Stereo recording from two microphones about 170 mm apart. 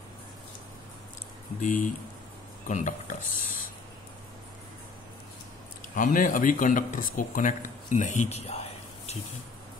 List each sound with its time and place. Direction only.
1.6 s speech: 55° left (ahead or behind)
5.9 s speech: 50° left (ahead or behind)